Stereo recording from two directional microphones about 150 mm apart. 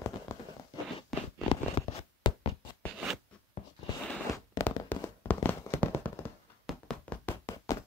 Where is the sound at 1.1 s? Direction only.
Centre (ahead or behind).